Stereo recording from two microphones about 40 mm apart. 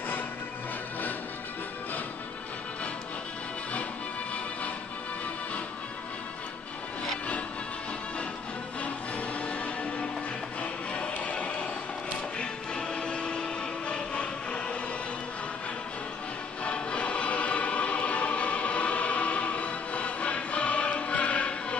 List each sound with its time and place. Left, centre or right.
10.6 s music: left
16.6 s music: left